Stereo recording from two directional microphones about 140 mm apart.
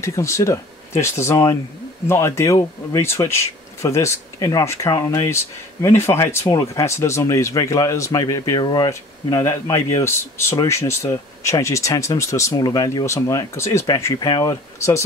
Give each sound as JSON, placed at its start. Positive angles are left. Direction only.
{"t": 0.0, "sound": "speech", "side_deg": 20}